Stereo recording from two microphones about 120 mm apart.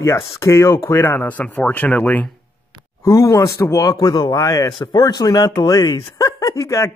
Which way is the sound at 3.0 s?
25° left (ahead or behind).